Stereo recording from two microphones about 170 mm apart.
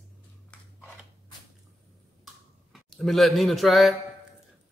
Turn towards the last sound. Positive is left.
turn(degrees=0)  # may be behind; listen again after turning